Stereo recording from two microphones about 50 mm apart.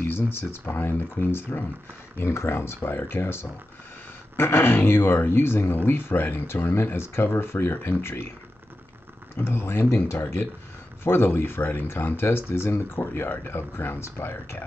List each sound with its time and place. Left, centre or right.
0.3 s speech: left
2.1 s speech: left
9.4 s speech: left